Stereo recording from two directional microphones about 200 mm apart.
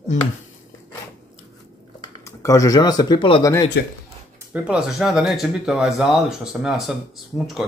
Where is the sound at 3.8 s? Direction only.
55° left (ahead or behind).